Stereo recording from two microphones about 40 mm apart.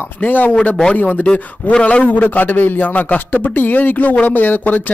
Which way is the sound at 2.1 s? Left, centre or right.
Left.